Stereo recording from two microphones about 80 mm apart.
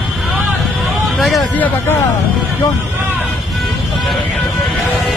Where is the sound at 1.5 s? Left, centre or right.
Left.